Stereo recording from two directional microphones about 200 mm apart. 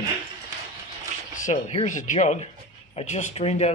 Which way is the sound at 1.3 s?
40° left (ahead or behind).